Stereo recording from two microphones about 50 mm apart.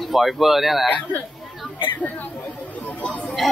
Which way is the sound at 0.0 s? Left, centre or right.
Centre.